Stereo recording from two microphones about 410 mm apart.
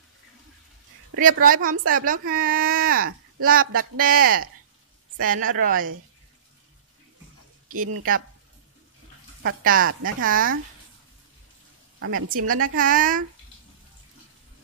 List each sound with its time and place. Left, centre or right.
1.1 s speech: centre
7.7 s speech: centre
9.4 s speech: right
12.0 s speech: right